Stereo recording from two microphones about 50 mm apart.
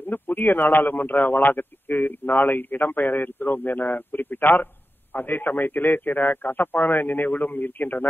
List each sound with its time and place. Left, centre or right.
0.0 s a man's voice: left